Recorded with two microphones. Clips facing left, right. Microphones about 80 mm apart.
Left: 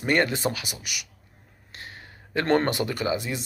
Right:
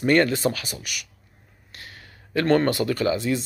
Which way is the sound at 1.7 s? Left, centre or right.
Left.